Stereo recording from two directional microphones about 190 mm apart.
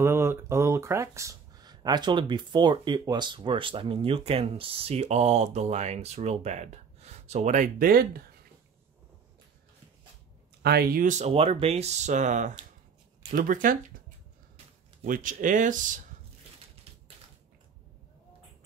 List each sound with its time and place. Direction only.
0.0 s speech: 15° right (ahead or behind); by 8.2 s 50° right (ahead or behind)
10.6 s speech: 55° right (ahead or behind)